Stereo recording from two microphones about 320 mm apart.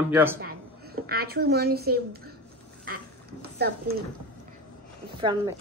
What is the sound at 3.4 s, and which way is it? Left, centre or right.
Speech, right.